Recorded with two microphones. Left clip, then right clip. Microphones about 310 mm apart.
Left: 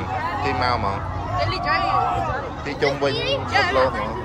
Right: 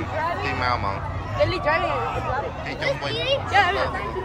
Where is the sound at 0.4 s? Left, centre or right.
Centre.